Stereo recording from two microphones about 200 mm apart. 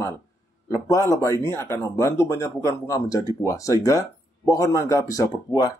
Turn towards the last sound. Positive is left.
turn(degrees=15)  # may be behind; listen again after turning